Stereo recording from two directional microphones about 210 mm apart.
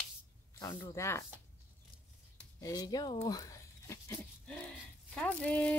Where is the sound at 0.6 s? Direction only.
15° left (ahead or behind).